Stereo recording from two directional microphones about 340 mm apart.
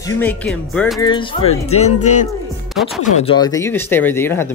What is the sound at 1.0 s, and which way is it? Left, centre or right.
Speech, centre.